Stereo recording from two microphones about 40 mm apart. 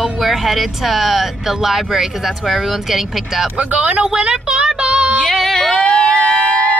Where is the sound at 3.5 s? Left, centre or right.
Right.